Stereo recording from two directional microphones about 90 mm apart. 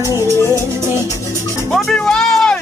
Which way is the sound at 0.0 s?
35° left (ahead or behind).